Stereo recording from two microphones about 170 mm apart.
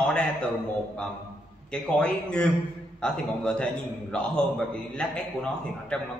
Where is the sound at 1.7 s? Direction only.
5° left (ahead or behind).